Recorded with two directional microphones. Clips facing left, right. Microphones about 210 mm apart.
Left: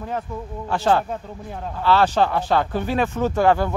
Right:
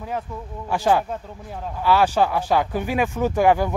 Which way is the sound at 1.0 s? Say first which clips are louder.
Left 1 dB; centre (ahead or behind).